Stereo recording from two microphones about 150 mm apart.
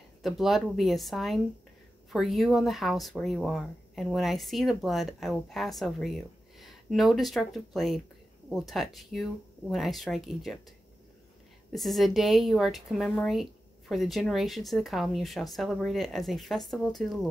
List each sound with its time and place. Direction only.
0.2 s speech: centre (ahead or behind)
11.7 s speech: centre (ahead or behind)